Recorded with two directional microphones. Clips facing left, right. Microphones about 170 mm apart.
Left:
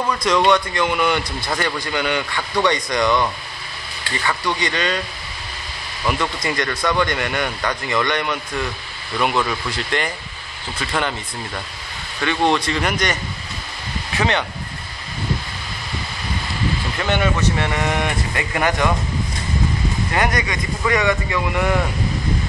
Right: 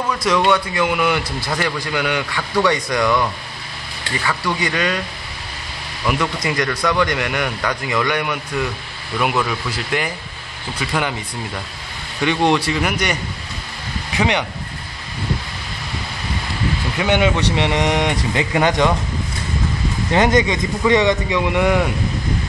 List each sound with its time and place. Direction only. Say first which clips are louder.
0.1 s a man's voice: even; 5° right (ahead or behind)
4.3 s a man's voice: right 1 dB; 5° right (ahead or behind)
6.0 s a man's voice: right 1 dB; 10° right (ahead or behind)
6.7 s speech: right 1 dB; 5° left (ahead or behind)
7.1 s a man's voice: right 1 dB; 10° right (ahead or behind)
12.2 s a man's voice: right 2 dB; 15° right (ahead or behind)
16.9 s speech: right 5 dB; 10° right (ahead or behind)
20.1 s speech: right 8 dB; 20° right (ahead or behind)